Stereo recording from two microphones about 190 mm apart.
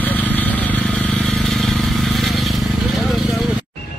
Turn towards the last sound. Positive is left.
turn(degrees=0)  # may be behind; listen again after turning